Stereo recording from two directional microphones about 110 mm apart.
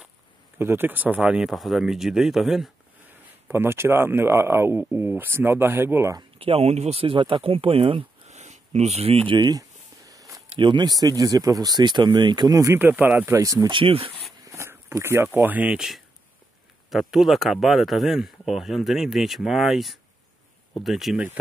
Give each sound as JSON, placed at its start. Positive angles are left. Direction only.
{"t": 0.6, "sound": "speech", "side_deg": -20}
{"t": 3.4, "sound": "speech", "side_deg": -20}
{"t": 6.3, "sound": "speech", "side_deg": -60}
{"t": 8.3, "sound": "a sound", "side_deg": -90}
{"t": 9.3, "sound": "a sound", "side_deg": -40}
{"t": 10.6, "sound": "speech", "side_deg": -45}
{"t": 12.7, "sound": "speech", "side_deg": -15}
{"t": 13.7, "sound": "speech", "side_deg": -55}
{"t": 14.4, "sound": "a sound", "side_deg": -25}
{"t": 15.3, "sound": "speech", "side_deg": -15}
{"t": 17.1, "sound": "speech", "side_deg": 0}